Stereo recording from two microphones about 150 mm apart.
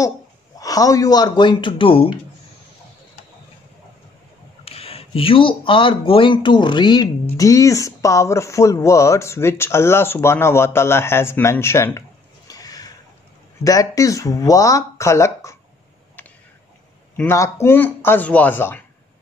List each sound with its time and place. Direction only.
0.6 s speech: 25° left (ahead or behind)
4.6 s speech: 40° left (ahead or behind); by 12.0 s 15° left (ahead or behind)
12.4 s a sound: 25° left (ahead or behind)
13.7 s speech: 20° left (ahead or behind)
17.2 s speech: 20° left (ahead or behind)